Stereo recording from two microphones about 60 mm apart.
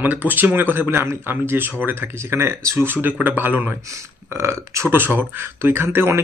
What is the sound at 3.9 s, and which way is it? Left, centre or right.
Speech, right.